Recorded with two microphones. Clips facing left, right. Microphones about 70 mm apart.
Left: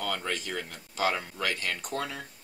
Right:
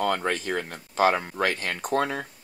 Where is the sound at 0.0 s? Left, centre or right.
Right.